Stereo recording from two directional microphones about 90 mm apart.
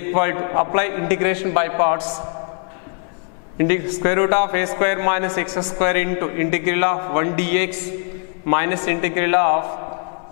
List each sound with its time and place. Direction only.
0.1 s a man's voice: 15° left (ahead or behind)
3.5 s a man's voice: 10° left (ahead or behind)